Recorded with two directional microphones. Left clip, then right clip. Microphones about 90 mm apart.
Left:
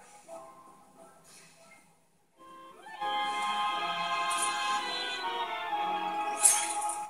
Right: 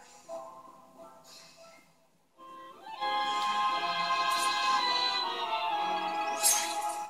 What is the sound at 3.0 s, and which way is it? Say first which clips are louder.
Music: right 1 dB; 30° right (ahead or behind).